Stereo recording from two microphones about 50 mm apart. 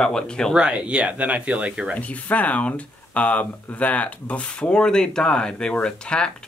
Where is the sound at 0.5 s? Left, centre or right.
Centre.